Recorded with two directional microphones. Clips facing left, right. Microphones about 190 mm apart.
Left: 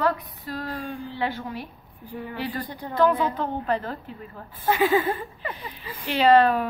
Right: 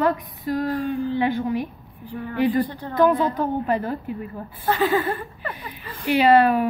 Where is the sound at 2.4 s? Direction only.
15° right (ahead or behind).